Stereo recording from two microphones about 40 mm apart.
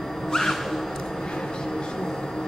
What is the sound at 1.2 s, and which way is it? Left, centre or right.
Vehicle, centre.